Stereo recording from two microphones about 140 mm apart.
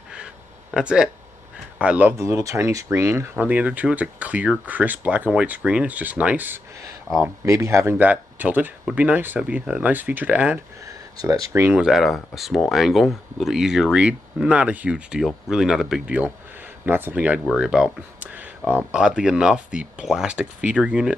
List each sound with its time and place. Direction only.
0.7 s speech: 5° right (ahead or behind)
11.1 s speech: 25° right (ahead or behind)
11.8 s speech: centre (ahead or behind)